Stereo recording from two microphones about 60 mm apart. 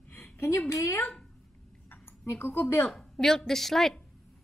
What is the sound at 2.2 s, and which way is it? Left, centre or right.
Speech, left.